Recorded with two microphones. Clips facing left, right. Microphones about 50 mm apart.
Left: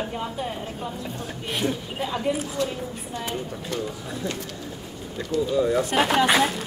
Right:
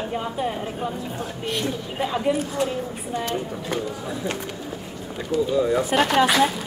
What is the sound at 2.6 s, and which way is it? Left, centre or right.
Speech, right.